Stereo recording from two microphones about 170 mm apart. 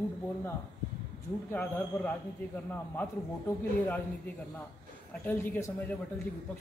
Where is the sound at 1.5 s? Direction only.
10° left (ahead or behind).